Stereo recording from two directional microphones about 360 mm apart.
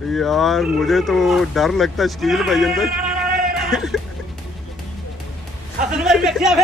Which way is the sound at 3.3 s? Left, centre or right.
Centre.